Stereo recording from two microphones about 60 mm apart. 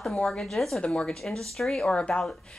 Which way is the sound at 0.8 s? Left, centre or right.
Centre.